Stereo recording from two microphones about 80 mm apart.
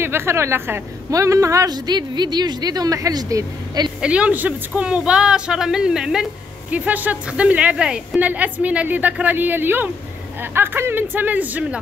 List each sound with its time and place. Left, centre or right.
0.0 s speech: right
1.1 s speech: right
1.7 s a woman's voice: right
4.0 s speech: centre
6.7 s a woman's voice: centre